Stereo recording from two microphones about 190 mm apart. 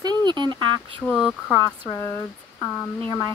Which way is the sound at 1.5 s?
15° left (ahead or behind).